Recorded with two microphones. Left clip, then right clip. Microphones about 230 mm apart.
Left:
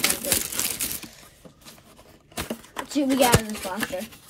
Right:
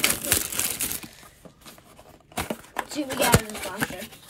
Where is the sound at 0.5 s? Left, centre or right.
Centre.